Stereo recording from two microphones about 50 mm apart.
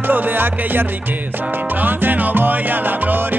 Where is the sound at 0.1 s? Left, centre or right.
Right.